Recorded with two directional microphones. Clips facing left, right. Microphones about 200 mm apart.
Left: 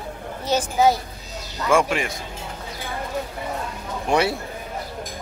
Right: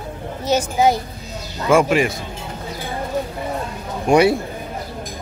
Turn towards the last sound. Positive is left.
turn(degrees=-15)  # may be behind; listen again after turning